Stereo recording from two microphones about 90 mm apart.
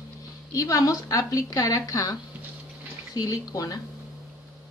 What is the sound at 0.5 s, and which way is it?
A woman's voice, 40° left (ahead or behind).